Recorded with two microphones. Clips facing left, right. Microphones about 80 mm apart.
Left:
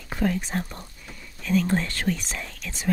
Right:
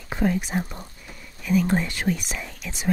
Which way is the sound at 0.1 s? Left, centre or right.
Centre.